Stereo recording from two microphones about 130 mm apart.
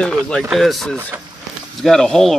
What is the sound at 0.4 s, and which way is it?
Speech, centre (ahead or behind).